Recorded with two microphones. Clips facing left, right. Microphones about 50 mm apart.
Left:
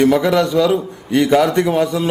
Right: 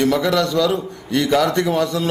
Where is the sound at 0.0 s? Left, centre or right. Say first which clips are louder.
Left 4 dB; left.